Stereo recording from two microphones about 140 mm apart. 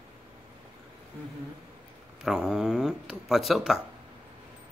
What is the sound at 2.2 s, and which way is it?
Speech, 5° right (ahead or behind).